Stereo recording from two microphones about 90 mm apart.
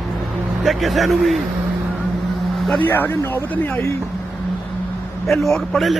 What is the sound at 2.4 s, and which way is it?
Vehicle, centre (ahead or behind).